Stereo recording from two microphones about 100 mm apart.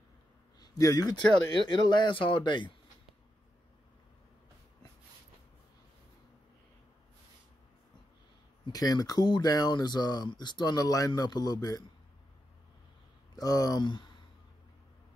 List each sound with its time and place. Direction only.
0.6 s speech: 40° left (ahead or behind)
1.5 s speech: 50° left (ahead or behind)
8.6 s speech: 40° left (ahead or behind)
13.4 s speech: 40° left (ahead or behind)